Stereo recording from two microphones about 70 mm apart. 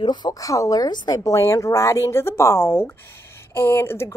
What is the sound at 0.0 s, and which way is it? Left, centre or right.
A woman's voice, left.